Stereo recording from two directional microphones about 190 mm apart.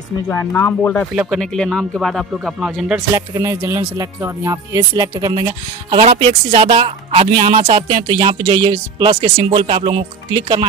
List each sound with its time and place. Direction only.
0.3 s speech: 10° left (ahead or behind); by 3.3 s 5° right (ahead or behind)
3.3 s speech: 15° right (ahead or behind)